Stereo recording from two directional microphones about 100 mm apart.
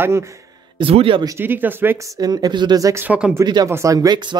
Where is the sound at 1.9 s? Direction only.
40° right (ahead or behind).